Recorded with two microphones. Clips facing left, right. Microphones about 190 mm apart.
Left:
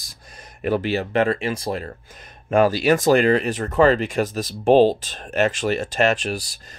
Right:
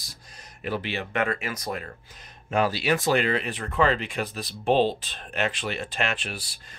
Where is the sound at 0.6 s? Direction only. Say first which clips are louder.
Left 8 dB; 50° left (ahead or behind); by 1.9 s 30° left (ahead or behind).